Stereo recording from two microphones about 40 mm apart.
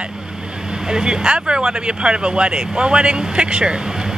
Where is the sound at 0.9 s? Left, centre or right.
Right.